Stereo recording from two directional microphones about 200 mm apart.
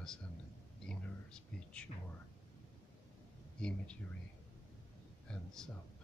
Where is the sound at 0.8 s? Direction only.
5° left (ahead or behind).